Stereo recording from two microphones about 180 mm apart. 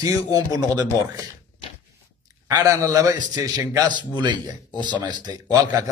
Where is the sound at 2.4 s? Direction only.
20° right (ahead or behind).